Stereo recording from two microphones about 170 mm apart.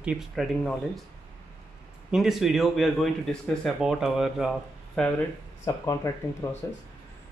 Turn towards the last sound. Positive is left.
turn(degrees=15)  # may be behind; listen again after turning